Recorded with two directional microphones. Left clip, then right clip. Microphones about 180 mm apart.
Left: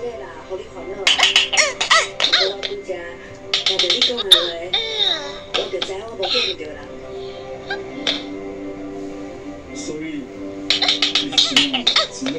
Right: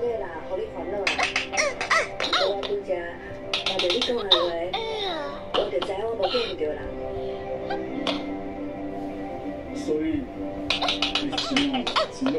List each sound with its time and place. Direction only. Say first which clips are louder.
1.0 s music: left 12 dB; 10° left (ahead or behind)
2.2 s music: left 6 dB; 20° right (ahead or behind)
3.5 s baby cry: left 7 dB; 15° right (ahead or behind)
7.7 s finger snapping: left 7 dB; 15° right (ahead or behind)
10.7 s music: left 8 dB; 15° right (ahead or behind)
11.5 s baby laughter: left 8 dB; 10° left (ahead or behind)
11.8 s a sound: left 6 dB; 15° right (ahead or behind)